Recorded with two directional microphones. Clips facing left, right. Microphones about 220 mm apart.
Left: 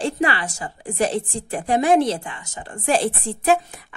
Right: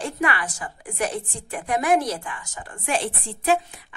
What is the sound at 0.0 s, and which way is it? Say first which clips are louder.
A woman's voice: left 4 dB; 30° left (ahead or behind).